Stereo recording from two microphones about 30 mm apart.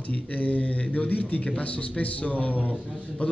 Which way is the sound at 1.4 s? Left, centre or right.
Left.